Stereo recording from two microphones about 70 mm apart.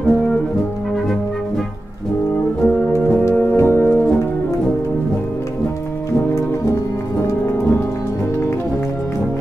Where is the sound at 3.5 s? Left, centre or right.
Left.